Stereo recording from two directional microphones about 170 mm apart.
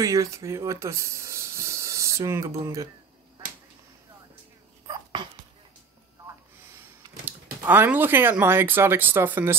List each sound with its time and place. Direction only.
0.0 s speech: 20° right (ahead or behind)
4.8 s a sound: 25° right (ahead or behind)
7.6 s speech: 10° right (ahead or behind)